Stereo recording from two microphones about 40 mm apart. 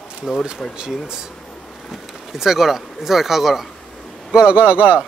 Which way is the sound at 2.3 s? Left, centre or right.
Centre.